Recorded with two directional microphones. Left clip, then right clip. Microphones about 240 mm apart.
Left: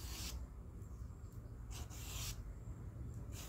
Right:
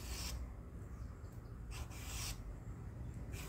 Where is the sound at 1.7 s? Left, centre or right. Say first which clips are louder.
Right 2 dB; centre.